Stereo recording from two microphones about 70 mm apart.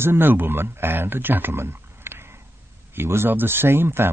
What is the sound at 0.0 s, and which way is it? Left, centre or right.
Speech, right.